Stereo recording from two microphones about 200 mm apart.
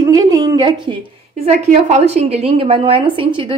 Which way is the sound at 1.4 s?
35° right (ahead or behind).